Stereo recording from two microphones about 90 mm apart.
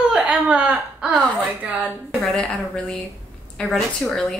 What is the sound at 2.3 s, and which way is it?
Speech, 10° left (ahead or behind).